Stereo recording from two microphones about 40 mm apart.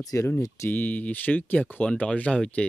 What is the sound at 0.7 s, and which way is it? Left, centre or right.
Speech, left.